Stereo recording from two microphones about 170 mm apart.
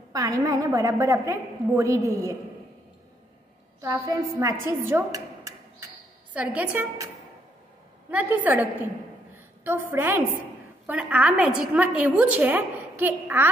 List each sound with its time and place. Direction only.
0.1 s a woman's voice: 20° right (ahead or behind)
3.8 s a woman's voice: 15° right (ahead or behind)
8.1 s a woman's voice: 10° right (ahead or behind)
9.3 s a sound: 15° right (ahead or behind)
10.9 s a woman's voice: 10° right (ahead or behind)